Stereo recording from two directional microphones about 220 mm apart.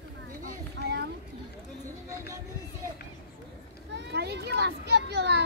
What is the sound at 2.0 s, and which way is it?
Speech, 15° right (ahead or behind).